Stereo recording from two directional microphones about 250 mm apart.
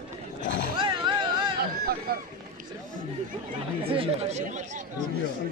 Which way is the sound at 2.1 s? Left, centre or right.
Right.